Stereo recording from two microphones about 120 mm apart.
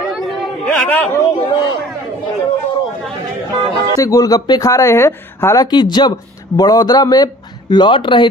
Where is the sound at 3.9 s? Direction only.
25° left (ahead or behind).